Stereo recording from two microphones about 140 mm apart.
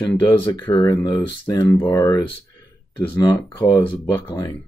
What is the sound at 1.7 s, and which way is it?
Speech, 15° left (ahead or behind).